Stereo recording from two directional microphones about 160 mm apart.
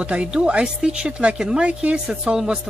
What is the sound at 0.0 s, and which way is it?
Speech, 5° right (ahead or behind).